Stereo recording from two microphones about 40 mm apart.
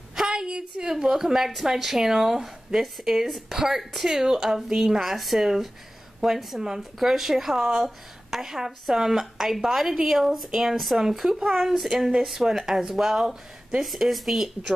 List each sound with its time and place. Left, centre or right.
0.1 s a woman's voice: centre
11.4 s speech: centre
11.9 s a woman's voice: centre
13.8 s speech: centre